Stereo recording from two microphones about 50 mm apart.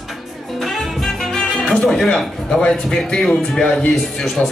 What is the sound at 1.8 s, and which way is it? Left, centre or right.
A man's voice, centre.